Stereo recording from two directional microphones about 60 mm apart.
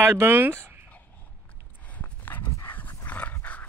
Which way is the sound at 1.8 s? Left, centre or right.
Left.